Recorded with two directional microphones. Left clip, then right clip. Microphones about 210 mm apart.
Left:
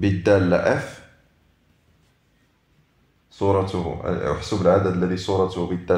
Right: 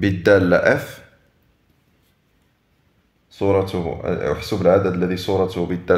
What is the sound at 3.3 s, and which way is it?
Speech, 30° right (ahead or behind).